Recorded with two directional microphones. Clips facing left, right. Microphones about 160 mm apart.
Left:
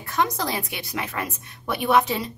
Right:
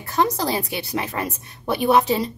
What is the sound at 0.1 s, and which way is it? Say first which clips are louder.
A woman's voice: right 4 dB; 30° right (ahead or behind).